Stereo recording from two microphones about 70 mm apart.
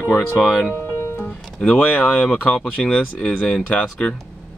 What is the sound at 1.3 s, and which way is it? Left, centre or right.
Music, centre.